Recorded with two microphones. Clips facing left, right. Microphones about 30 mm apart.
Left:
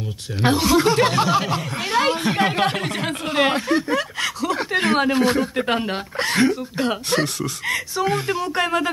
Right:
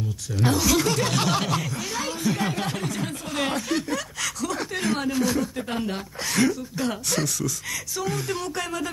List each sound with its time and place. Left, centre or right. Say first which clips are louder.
0.4 s speech: left 5 dB; left
1.1 s snicker: left 5 dB; centre
1.9 s speech: left 9 dB; left
3.9 s a sound: left 6 dB; left
4.8 s speech: left 6 dB; left